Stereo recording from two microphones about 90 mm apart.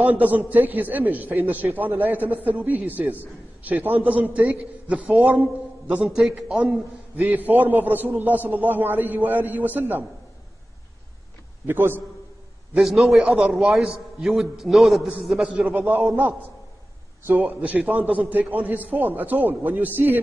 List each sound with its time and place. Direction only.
0.0 s a man's voice: 15° right (ahead or behind)
6.0 s a man's voice: 5° right (ahead or behind)
7.2 s a man's voice: 20° right (ahead or behind)
11.6 s a man's voice: 25° right (ahead or behind)
12.7 s a man's voice: centre (ahead or behind); by 19.9 s 20° right (ahead or behind)